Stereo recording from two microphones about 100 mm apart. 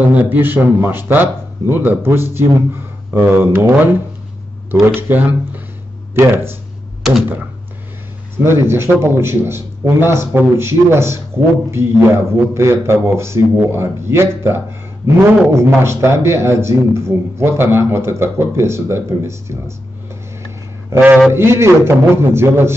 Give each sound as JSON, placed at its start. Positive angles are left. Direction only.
{"t": 0.1, "sound": "a man's voice", "side_deg": -20}
{"t": 8.4, "sound": "a man's voice", "side_deg": -25}
{"t": 20.9, "sound": "a man's voice", "side_deg": -20}